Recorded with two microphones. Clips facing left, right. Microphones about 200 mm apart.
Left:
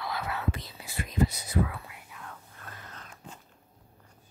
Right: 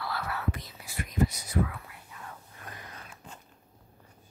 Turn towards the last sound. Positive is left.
turn(degrees=-10)  # may be behind; listen again after turning